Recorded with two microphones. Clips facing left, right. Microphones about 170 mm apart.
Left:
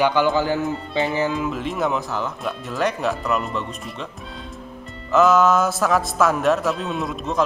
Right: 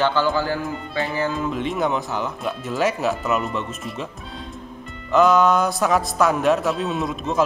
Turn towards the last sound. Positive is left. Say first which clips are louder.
# right 1 dB
turn(degrees=0)  # may be behind; listen again after turning